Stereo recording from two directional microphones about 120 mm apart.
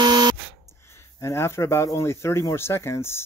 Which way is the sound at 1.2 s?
20° left (ahead or behind).